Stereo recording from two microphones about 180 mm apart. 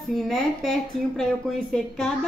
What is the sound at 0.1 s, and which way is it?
A woman's voice, centre (ahead or behind).